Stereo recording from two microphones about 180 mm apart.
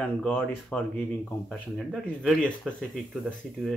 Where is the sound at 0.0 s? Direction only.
10° left (ahead or behind).